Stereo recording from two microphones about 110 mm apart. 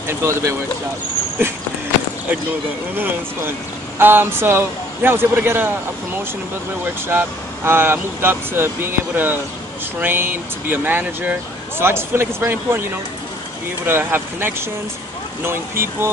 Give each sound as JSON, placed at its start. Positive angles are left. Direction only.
{"t": 0.2, "sound": "speech", "side_deg": -25}
{"t": 4.0, "sound": "speech", "side_deg": -20}
{"t": 7.1, "sound": "speech", "side_deg": -20}